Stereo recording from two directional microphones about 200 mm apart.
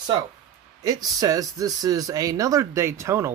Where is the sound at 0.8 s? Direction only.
20° right (ahead or behind).